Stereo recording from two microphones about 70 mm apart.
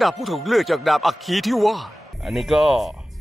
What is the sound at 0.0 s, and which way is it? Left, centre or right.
Speech, centre.